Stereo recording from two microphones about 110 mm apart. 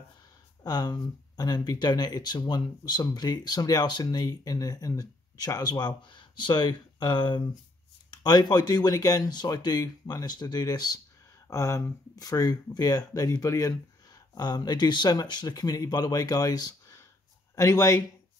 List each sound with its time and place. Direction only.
0.7 s speech: 40° left (ahead or behind)